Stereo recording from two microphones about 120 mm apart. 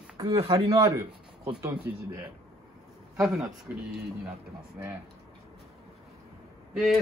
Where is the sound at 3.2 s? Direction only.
5° right (ahead or behind).